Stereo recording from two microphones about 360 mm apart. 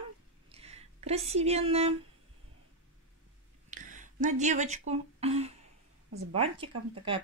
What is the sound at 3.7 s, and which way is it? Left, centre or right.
Speech, right.